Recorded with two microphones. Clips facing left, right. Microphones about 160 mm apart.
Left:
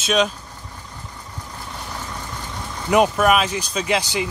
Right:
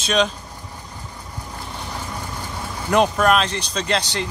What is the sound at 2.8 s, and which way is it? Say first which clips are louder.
A man's voice: left 1 dB; 5° left (ahead or behind).